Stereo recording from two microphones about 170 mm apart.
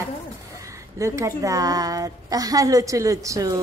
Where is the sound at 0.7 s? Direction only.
15° right (ahead or behind).